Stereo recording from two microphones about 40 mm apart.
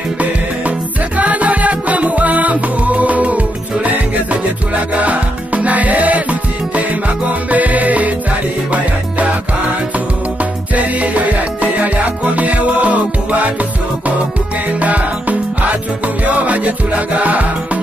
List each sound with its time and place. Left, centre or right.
0.2 s music: right
14.8 s music: right